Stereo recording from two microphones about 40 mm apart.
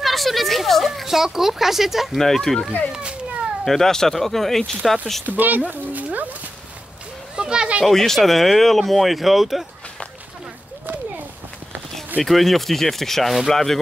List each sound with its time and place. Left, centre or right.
0.0 s speech: centre
1.0 s speech: centre
2.1 s speech: centre
5.2 s speech: right
5.7 s a sound: right
7.3 s children playing: right
7.8 s speech: centre
12.2 s speech: centre